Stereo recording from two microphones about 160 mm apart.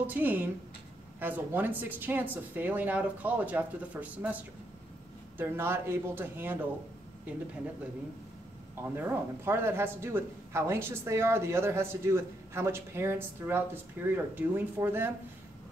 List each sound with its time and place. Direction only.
0.0 s speech: 10° right (ahead or behind)
5.4 s speech: 15° right (ahead or behind)
8.8 s speech: 15° right (ahead or behind)